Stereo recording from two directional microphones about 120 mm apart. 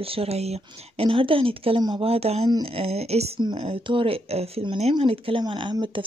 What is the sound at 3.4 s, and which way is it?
Speech, 45° right (ahead or behind).